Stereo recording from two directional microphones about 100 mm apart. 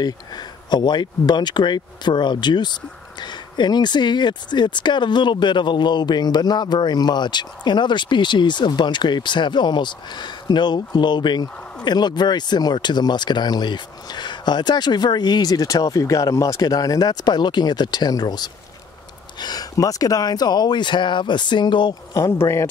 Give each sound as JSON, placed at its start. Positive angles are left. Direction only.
{"t": 0.0, "sound": "speech", "side_deg": 45}
{"t": 22.4, "sound": "a man's voice", "side_deg": 30}